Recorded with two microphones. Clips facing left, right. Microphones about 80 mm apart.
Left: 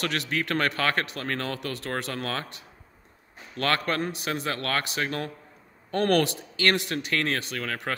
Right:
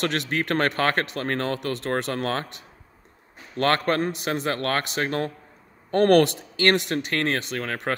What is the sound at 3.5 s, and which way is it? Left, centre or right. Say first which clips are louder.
Speech: right 5 dB; right.